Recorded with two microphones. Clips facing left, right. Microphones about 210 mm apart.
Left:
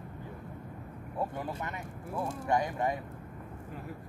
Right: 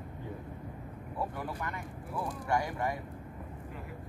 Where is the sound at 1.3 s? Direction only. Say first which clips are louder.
Left 1 dB; 25° left (ahead or behind).